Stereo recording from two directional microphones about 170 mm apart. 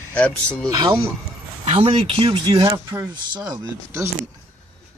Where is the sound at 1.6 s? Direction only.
35° right (ahead or behind); by 4.1 s 20° right (ahead or behind).